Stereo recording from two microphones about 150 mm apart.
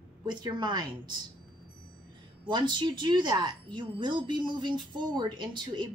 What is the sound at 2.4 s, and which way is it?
A woman's voice, 30° right (ahead or behind).